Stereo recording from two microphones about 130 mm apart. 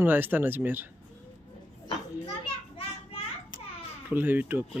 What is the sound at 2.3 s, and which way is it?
Children playing, 45° left (ahead or behind).